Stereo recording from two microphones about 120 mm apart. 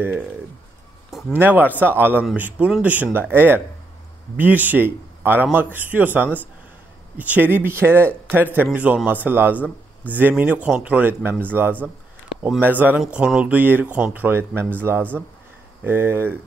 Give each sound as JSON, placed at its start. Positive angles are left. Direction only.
{"t": 1.4, "sound": "a man's voice", "side_deg": -15}
{"t": 12.4, "sound": "a man's voice", "side_deg": -15}